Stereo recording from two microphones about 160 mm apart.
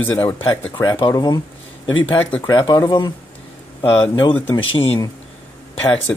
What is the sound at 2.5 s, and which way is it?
Speech, 30° left (ahead or behind).